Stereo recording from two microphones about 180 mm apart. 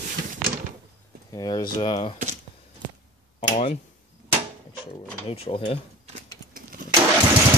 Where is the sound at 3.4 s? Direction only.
40° left (ahead or behind).